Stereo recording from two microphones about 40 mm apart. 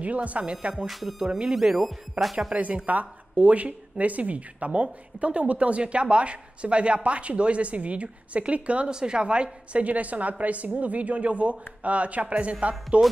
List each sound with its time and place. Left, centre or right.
0.0 s a woman's voice: right
0.8 s speech: centre
2.9 s a woman's voice: right